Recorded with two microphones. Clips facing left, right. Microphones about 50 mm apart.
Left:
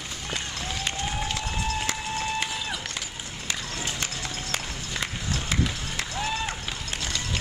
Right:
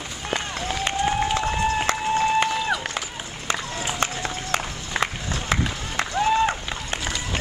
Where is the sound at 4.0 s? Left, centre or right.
Right.